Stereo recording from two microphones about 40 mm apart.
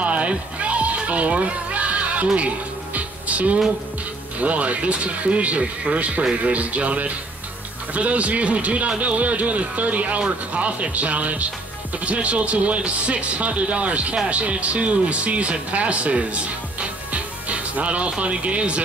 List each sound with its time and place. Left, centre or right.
0.0 s music: right
4.4 s a man's voice: right